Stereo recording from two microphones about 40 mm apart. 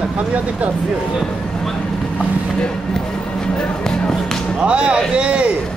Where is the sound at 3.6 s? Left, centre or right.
Left.